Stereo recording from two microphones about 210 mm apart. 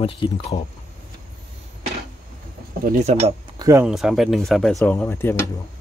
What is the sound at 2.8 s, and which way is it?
Speech, 35° right (ahead or behind).